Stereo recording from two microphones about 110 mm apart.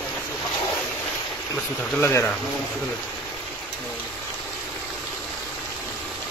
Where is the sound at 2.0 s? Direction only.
20° left (ahead or behind).